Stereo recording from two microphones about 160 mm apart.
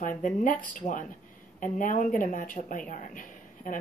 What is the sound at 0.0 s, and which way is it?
A woman's voice, 55° left (ahead or behind).